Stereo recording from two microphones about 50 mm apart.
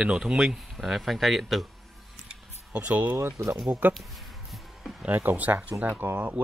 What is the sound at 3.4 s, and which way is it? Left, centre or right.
Speech, right.